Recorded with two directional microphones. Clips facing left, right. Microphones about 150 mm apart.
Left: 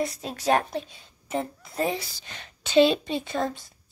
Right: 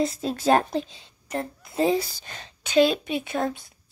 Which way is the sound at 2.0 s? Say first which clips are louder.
Right 9 dB; 45° right (ahead or behind).